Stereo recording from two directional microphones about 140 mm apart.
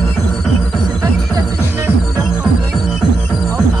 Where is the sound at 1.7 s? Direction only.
20° right (ahead or behind).